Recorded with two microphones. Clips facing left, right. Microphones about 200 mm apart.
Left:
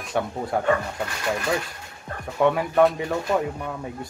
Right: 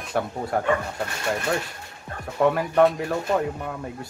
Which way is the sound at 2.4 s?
Centre (ahead or behind).